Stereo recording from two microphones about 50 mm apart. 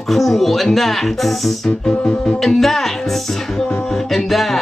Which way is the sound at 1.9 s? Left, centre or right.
Left.